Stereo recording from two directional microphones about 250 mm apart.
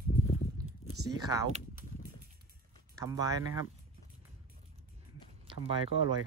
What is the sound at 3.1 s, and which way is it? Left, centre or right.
Speech, centre.